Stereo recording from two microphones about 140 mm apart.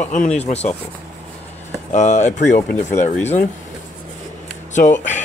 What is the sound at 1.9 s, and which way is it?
Speech, 60° left (ahead or behind).